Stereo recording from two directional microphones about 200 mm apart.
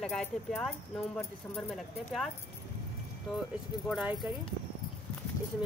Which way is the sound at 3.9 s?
Centre (ahead or behind).